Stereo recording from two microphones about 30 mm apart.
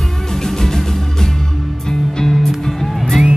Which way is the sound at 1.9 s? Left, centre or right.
Left.